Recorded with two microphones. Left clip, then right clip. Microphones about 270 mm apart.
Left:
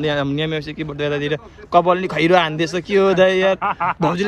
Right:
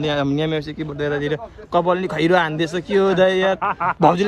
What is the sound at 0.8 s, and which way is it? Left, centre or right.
Speech, centre.